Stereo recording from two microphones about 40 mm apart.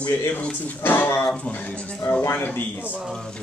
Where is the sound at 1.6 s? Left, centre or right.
Left.